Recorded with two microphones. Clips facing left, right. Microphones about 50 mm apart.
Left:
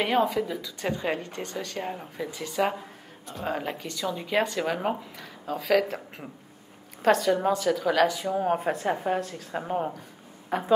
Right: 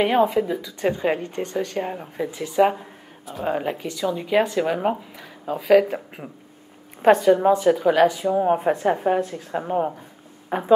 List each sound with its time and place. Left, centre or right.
0.0 s speech: centre
7.0 s a woman's voice: centre